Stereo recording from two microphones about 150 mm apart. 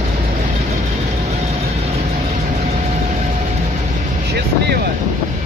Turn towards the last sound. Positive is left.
turn(degrees=-90)